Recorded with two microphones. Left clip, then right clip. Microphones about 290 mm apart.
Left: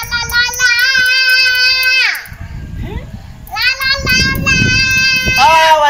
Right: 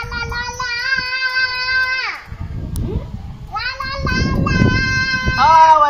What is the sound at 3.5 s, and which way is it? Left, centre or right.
Children playing, left.